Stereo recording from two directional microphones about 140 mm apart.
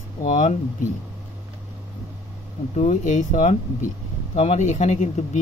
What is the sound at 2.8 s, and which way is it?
Speech, 60° left (ahead or behind).